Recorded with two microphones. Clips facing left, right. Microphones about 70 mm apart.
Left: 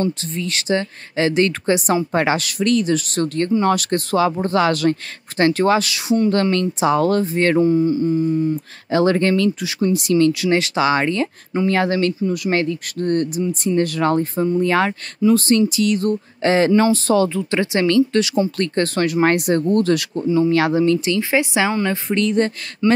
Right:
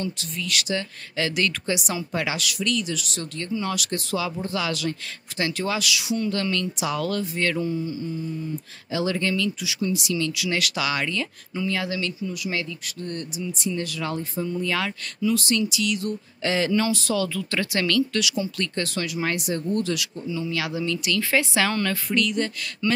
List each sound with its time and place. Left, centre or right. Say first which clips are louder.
0.0 s speech: left 8 dB; left